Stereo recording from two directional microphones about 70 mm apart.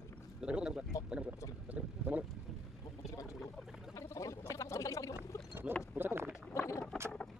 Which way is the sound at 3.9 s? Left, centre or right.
Left.